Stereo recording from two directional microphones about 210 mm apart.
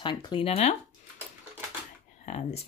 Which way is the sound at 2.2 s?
30° left (ahead or behind).